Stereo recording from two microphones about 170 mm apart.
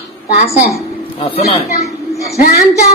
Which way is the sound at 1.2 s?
35° left (ahead or behind).